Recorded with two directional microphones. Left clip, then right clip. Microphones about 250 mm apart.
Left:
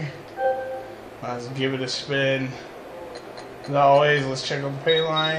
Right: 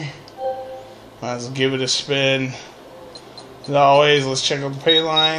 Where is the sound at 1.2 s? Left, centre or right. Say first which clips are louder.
Right 6 dB; right.